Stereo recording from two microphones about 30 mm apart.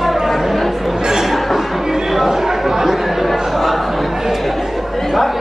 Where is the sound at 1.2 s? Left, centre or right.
Centre.